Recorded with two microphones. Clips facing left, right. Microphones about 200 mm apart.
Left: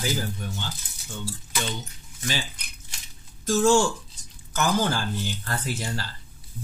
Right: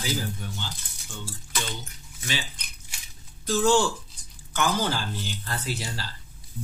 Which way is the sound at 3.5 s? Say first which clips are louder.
Left 2 dB; 45° left (ahead or behind).